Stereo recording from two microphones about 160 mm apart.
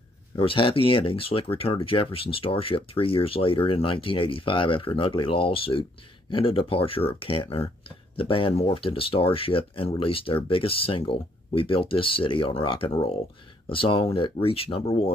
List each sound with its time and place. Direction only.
0.4 s speech: 35° left (ahead or behind)